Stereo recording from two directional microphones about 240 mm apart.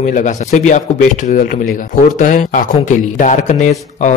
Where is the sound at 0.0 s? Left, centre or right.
Left.